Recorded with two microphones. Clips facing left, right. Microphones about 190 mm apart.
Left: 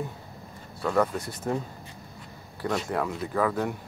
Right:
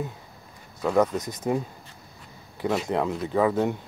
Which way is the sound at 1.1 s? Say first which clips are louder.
Right 3 dB; 15° right (ahead or behind).